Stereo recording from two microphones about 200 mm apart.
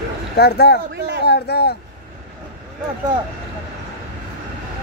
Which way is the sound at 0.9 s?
55° right (ahead or behind).